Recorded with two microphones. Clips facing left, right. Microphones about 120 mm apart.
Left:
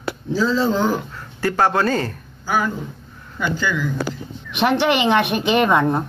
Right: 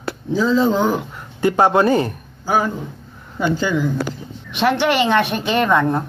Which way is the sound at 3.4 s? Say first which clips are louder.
Right 4 dB; 30° right (ahead or behind).